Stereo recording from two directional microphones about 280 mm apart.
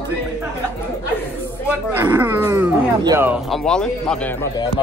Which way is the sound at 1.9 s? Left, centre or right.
Centre.